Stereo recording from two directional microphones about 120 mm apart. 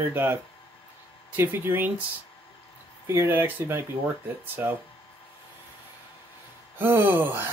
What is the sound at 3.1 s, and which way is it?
Speech, 20° right (ahead or behind).